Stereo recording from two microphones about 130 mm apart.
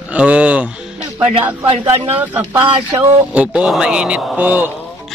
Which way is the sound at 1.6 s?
45° right (ahead or behind).